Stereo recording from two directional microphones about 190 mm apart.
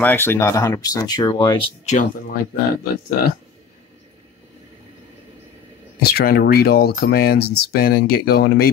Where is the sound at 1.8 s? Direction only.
40° left (ahead or behind).